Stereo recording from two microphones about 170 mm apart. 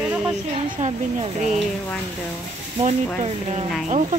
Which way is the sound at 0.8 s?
40° right (ahead or behind).